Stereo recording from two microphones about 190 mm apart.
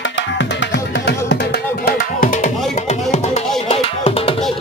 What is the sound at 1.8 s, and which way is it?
Music, 45° left (ahead or behind).